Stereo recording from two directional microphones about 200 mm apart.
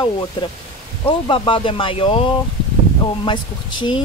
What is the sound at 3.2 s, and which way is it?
Speech, 25° left (ahead or behind).